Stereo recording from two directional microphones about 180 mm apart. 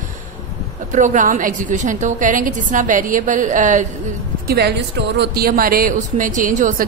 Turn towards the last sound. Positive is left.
turn(degrees=-45)  # may be behind; listen again after turning